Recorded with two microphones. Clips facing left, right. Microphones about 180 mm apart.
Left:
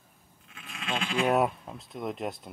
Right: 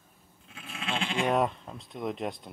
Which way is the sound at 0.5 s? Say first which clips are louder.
Even; 35° right (ahead or behind).